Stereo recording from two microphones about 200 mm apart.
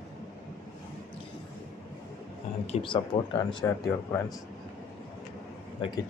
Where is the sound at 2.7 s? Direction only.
25° left (ahead or behind).